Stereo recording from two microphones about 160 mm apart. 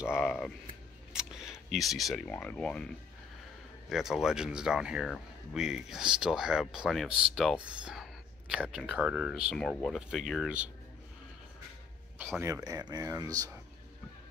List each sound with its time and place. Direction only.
0.2 s speech: 5° left (ahead or behind)
3.9 s speech: centre (ahead or behind)
12.2 s speech: 15° right (ahead or behind)